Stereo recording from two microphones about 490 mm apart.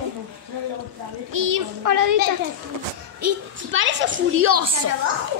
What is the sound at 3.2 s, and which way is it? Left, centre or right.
A woman's voice, right.